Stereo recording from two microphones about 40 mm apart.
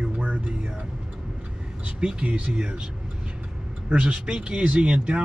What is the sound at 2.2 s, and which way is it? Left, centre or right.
Speech, right.